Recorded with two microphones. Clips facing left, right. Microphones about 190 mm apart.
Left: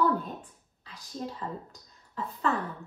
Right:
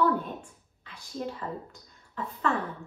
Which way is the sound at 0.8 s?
35° left (ahead or behind).